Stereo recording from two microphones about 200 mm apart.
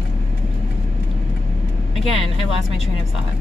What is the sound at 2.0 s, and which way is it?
Speech, 30° right (ahead or behind).